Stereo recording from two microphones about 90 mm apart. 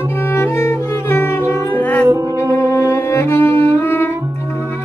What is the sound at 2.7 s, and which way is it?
Cello, 30° left (ahead or behind).